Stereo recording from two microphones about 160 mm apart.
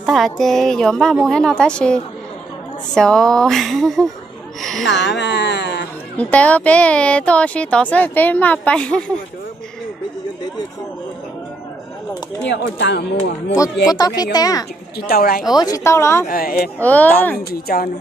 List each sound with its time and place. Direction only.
0.0 s a woman's voice: centre (ahead or behind)
4.9 s speech: 90° left
6.1 s speech: 10° left (ahead or behind)
12.4 s speech: 90° left
13.8 s a woman's voice: 25° left (ahead or behind)
15.0 s speech: 70° left (ahead or behind)
15.5 s speech: 25° left (ahead or behind)
16.3 s speech: 70° left (ahead or behind)
16.8 s speech: 10° left (ahead or behind)
17.4 s speech: 75° left (ahead or behind)